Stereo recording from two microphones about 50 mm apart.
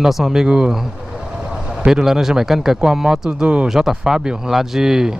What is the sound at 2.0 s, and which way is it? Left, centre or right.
Speech, centre.